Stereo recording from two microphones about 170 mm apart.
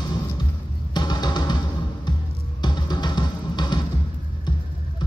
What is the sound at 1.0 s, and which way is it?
Music, 25° left (ahead or behind).